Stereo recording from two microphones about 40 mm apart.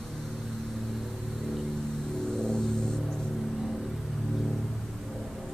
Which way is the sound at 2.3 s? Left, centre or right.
Centre.